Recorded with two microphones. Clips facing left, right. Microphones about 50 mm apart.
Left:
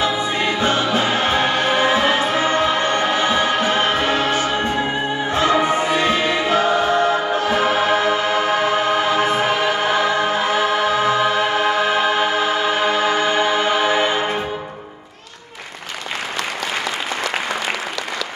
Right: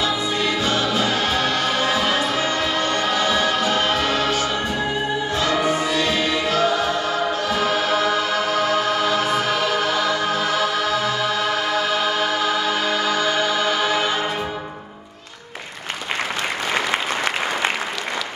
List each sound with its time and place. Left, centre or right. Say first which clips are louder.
0.0 s music: left 2 dB; left